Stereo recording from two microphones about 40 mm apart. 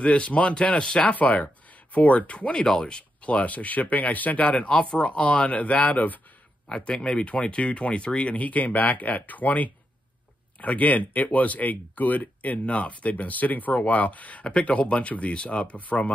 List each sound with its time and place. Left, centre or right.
0.0 s speech: left
6.7 s speech: left
8.4 s speech: left
14.4 s speech: left